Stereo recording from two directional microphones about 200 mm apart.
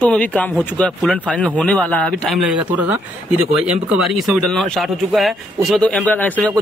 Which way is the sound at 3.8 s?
Centre (ahead or behind).